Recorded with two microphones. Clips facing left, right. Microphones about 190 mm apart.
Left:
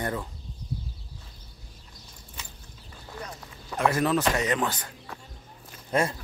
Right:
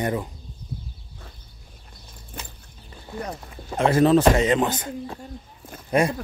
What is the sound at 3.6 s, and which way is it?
Speech, 25° right (ahead or behind).